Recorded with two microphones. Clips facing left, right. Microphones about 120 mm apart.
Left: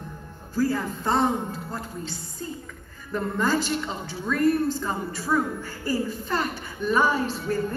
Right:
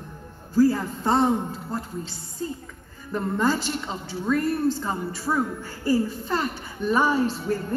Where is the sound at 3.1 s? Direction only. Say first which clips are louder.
Right 1 dB; 25° right (ahead or behind).